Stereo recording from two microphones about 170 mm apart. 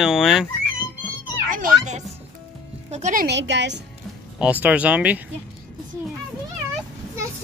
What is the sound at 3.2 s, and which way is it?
Speech, 90° right.